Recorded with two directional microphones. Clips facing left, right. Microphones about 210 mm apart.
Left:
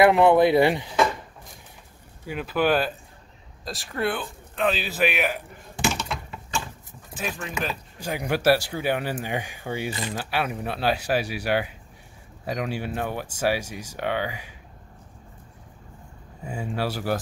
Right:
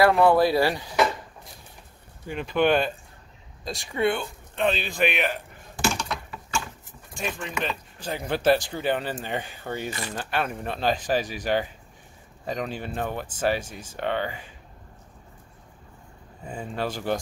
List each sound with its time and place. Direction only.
0.0 s speech: 20° left (ahead or behind)
2.2 s a man's voice: 5° left (ahead or behind)
7.2 s speech: 5° left (ahead or behind)
16.4 s speech: 10° left (ahead or behind)